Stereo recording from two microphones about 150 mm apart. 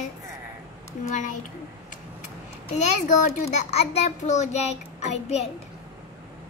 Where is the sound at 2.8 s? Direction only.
55° left (ahead or behind).